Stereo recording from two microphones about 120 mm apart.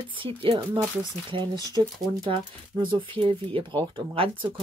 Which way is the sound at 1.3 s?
35° right (ahead or behind).